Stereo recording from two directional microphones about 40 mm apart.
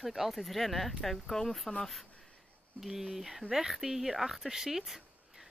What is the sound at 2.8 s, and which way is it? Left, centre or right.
Speech, centre.